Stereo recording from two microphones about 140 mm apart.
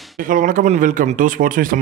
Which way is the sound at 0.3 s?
70° right (ahead or behind).